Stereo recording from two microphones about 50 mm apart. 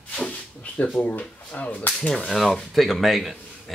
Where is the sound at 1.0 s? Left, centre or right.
Left.